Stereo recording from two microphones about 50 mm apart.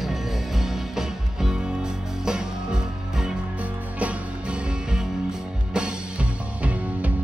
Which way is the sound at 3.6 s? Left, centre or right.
Right.